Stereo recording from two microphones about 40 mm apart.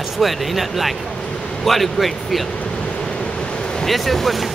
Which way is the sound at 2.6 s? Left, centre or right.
Left.